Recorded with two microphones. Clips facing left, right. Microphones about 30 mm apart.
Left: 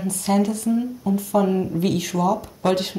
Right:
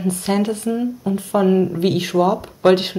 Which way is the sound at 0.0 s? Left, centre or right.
Right.